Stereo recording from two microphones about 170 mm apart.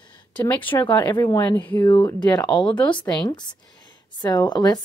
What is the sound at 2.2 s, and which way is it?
Speech, 25° left (ahead or behind).